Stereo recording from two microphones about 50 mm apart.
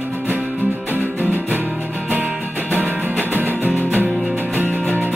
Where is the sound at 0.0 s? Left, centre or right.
Right.